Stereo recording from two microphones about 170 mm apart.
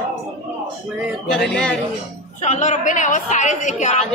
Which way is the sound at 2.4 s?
45° left (ahead or behind).